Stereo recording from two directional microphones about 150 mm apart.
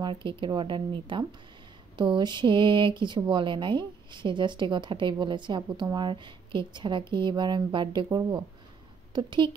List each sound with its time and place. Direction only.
0.0 s speech: 35° right (ahead or behind)